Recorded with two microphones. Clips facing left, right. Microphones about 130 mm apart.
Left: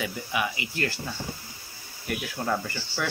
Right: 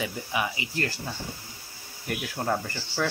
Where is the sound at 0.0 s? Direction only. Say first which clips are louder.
Even; 25° right (ahead or behind).